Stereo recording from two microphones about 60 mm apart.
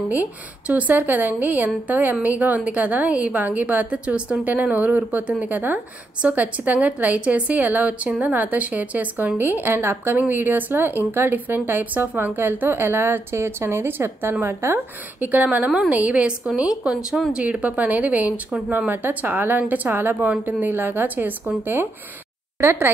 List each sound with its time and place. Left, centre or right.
0.1 s a woman's voice: right
15.1 s a woman's voice: right
22.6 s a woman's voice: right